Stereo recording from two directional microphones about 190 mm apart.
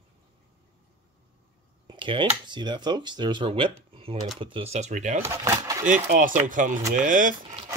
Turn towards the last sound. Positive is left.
turn(degrees=-45)  # may be behind; listen again after turning